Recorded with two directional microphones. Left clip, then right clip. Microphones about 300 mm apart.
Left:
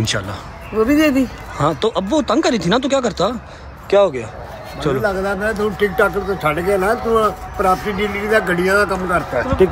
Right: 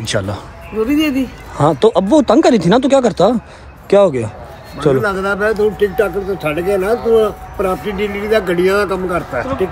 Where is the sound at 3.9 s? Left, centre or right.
Centre.